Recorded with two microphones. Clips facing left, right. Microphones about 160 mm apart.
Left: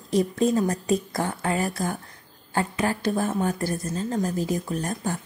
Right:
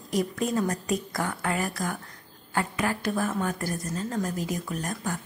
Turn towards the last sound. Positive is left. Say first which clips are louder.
# left 4 dB
turn(degrees=30)  # may be behind; listen again after turning